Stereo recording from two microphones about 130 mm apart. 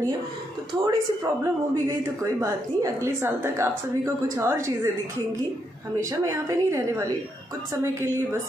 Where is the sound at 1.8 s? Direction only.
25° right (ahead or behind).